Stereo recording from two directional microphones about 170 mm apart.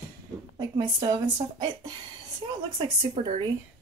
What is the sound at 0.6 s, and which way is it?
A woman's voice, 25° right (ahead or behind).